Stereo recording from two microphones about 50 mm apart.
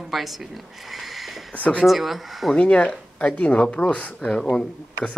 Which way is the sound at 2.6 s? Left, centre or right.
Left.